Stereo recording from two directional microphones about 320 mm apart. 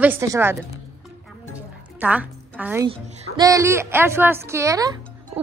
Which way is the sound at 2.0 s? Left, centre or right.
Centre.